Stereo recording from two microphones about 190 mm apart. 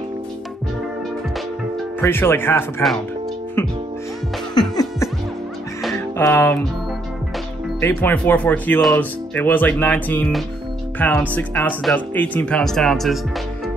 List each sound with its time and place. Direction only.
2.0 s speech: 10° left (ahead or behind)
4.6 s music: 20° left (ahead or behind)
7.8 s speech: 10° left (ahead or behind)